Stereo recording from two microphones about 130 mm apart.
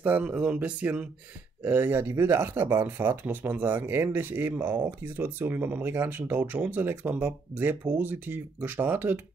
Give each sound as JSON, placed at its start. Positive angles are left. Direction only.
{"t": 0.0, "sound": "speech", "side_deg": -10}